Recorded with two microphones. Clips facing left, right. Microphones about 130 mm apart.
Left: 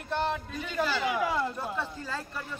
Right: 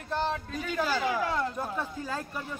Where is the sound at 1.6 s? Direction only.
15° right (ahead or behind).